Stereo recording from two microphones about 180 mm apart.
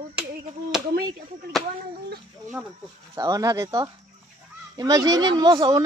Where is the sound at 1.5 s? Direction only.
Centre (ahead or behind).